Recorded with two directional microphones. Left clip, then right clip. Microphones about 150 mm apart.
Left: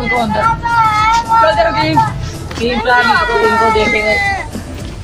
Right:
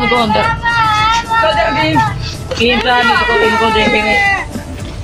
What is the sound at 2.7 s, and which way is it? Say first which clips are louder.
Speech: left 1 dB; 15° left (ahead or behind).